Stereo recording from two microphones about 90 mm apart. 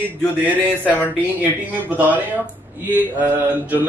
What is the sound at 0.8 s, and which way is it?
Speech, 15° left (ahead or behind).